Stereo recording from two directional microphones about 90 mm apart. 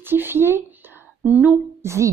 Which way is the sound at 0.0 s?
25° right (ahead or behind).